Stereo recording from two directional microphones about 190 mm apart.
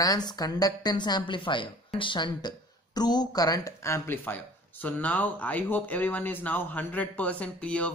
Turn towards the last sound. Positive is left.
turn(degrees=5)  # may be behind; listen again after turning